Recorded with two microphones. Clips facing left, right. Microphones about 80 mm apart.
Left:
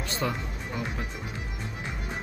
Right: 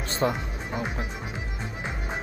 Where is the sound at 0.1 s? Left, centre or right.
Right.